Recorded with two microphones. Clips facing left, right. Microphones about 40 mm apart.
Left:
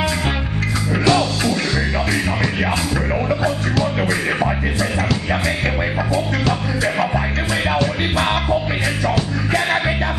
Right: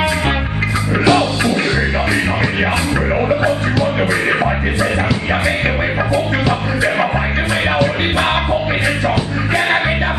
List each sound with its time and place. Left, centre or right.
1.0 s music: right
3.3 s music: centre
6.1 s music: centre